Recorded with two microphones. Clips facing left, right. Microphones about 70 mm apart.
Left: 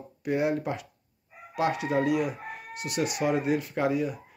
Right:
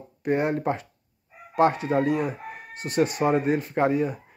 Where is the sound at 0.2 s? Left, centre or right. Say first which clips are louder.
Right 3 dB; right.